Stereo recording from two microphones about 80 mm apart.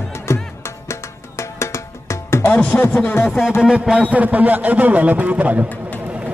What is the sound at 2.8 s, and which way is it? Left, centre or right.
Speech, left.